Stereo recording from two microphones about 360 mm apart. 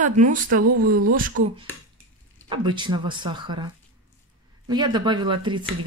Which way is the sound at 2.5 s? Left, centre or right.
Centre.